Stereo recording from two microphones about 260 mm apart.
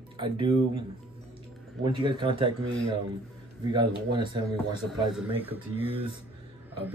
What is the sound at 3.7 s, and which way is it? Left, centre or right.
A man's voice, centre.